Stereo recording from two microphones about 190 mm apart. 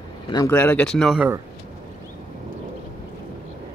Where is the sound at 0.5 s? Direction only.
5° left (ahead or behind).